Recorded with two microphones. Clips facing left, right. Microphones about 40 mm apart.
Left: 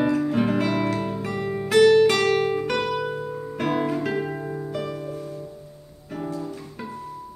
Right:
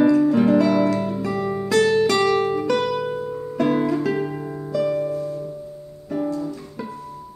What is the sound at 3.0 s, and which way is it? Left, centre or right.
Music, centre.